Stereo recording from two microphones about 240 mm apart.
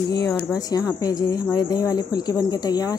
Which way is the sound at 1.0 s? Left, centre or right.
Centre.